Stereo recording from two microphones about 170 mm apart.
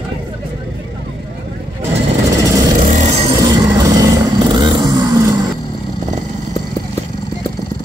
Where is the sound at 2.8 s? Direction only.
45° right (ahead or behind).